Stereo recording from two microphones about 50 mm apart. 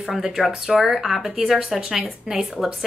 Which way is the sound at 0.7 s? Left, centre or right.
Centre.